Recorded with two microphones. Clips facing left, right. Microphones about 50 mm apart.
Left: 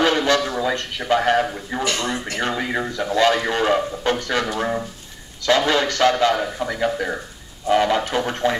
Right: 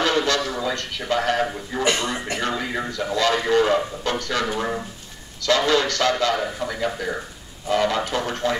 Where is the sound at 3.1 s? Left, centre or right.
Left.